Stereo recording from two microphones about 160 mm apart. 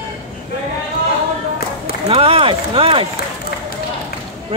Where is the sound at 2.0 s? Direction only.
35° right (ahead or behind).